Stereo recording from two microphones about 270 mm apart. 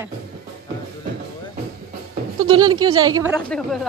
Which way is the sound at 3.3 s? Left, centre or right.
Centre.